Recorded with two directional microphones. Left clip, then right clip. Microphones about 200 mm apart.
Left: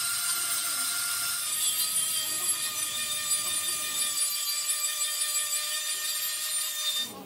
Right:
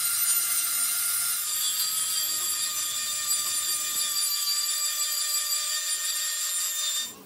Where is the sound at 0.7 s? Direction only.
25° right (ahead or behind).